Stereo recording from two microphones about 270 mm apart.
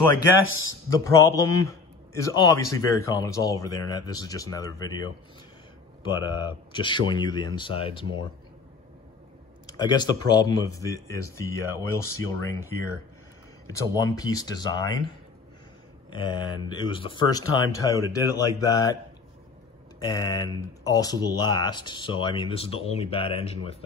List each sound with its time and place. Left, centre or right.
0.5 s speech: left
1.1 s a man's voice: centre
9.7 s a man's voice: centre
13.7 s a man's voice: centre
16.1 s a man's voice: centre
20.0 s a man's voice: centre